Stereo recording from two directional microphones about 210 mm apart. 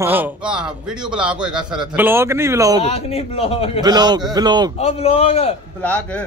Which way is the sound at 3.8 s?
20° right (ahead or behind).